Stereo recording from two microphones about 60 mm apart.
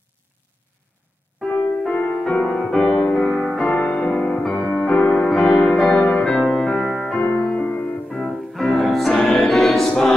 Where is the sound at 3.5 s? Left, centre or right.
Centre.